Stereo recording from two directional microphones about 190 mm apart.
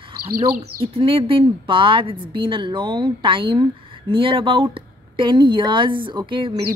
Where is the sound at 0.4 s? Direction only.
30° right (ahead or behind).